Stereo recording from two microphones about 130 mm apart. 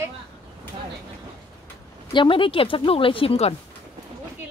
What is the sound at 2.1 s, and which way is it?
A woman's voice, 40° left (ahead or behind).